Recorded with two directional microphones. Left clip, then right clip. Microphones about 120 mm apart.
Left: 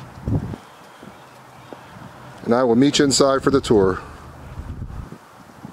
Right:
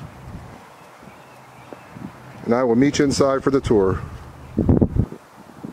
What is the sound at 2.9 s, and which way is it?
Speech, 30° left (ahead or behind).